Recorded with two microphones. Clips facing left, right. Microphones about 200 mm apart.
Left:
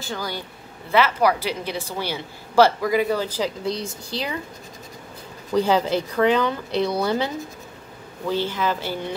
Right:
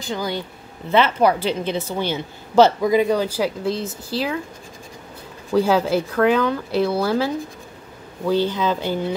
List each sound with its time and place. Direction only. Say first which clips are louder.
0.0 s a woman's voice: right 4 dB; 20° right (ahead or behind); by 4.4 s 5° right (ahead or behind)
5.5 s speech: right 2 dB; 5° right (ahead or behind)
8.3 s speech: right 4 dB; 15° right (ahead or behind)